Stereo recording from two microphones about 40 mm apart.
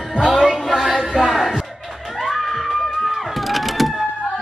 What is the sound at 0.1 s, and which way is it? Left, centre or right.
Music, centre.